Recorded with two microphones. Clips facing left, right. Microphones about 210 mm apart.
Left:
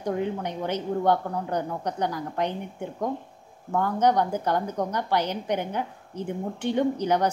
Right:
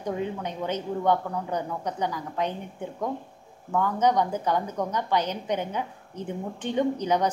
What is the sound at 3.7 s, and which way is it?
A woman's voice, 10° left (ahead or behind).